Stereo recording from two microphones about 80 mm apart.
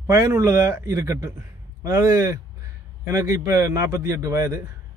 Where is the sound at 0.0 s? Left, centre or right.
Right.